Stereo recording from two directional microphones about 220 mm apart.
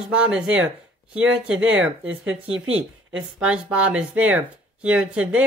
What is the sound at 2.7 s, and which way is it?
Speech, 60° right (ahead or behind).